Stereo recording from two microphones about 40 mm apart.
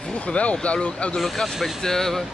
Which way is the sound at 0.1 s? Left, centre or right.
Left.